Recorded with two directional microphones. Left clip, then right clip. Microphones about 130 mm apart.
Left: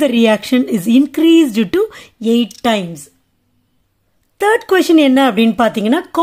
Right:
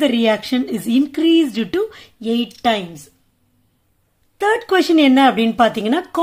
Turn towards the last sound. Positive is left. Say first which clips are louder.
# left 2 dB
turn(degrees=40)  # may be behind; listen again after turning